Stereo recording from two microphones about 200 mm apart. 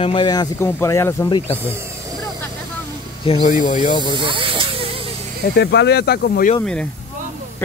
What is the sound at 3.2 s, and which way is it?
Speech, 25° left (ahead or behind).